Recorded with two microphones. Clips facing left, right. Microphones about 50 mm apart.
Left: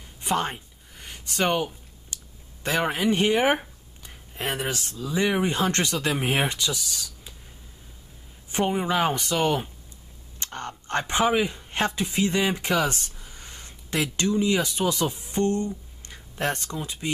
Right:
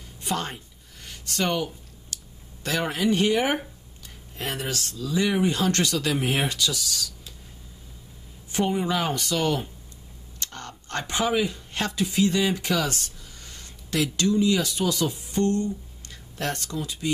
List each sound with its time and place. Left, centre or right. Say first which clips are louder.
0.2 s a sound: left 3 dB; left
2.6 s speech: left 1 dB; left
8.5 s speech: even; left